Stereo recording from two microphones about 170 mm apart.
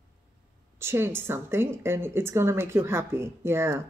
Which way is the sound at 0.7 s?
15° right (ahead or behind).